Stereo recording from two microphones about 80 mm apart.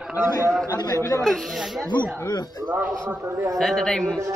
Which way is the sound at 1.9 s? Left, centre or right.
Left.